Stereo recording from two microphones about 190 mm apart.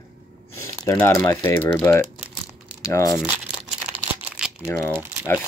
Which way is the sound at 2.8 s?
15° left (ahead or behind).